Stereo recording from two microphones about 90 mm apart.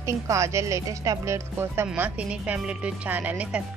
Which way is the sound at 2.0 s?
15° right (ahead or behind).